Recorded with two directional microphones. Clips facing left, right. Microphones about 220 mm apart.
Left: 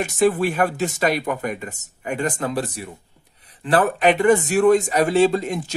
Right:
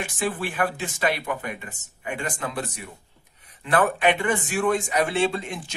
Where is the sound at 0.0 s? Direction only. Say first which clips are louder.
Left 9 dB; 40° left (ahead or behind).